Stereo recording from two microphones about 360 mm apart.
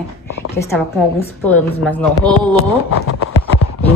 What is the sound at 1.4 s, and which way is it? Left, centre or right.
A woman's voice, centre.